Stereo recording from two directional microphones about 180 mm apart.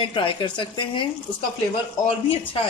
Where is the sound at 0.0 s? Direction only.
30° left (ahead or behind).